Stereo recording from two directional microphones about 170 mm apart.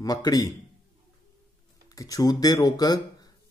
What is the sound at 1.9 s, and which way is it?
Speech, 20° left (ahead or behind).